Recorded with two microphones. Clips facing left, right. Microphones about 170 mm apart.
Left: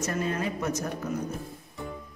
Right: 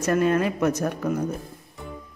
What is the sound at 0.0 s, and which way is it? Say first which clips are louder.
Speech: right 8 dB; 65° right (ahead or behind).